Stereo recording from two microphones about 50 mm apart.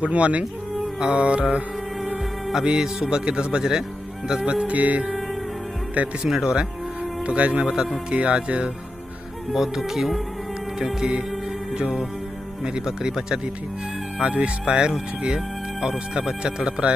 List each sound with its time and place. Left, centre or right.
0.0 s speech: right
2.6 s speech: centre
4.6 s speech: right
6.2 s speech: centre
7.2 s speech: right
7.6 s speech: centre
9.5 s speech: centre
14.2 s speech: right